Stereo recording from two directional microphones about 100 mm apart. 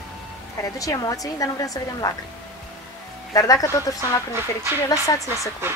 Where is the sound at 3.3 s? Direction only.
35° left (ahead or behind).